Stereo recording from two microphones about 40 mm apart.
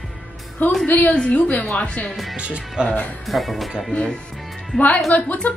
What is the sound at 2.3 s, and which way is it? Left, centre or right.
Speech, right.